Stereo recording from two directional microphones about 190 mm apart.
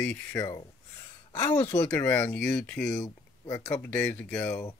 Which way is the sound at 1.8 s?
10° left (ahead or behind).